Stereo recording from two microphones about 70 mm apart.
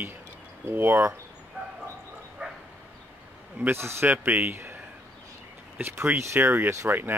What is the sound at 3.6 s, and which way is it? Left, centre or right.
Speech, right.